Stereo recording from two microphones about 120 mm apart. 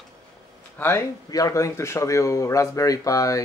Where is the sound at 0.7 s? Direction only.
20° left (ahead or behind).